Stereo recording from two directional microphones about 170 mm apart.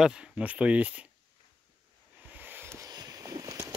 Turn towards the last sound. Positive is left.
turn(degrees=-20)  # may be behind; listen again after turning